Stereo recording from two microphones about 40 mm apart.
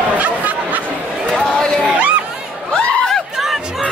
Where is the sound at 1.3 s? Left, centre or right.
Centre.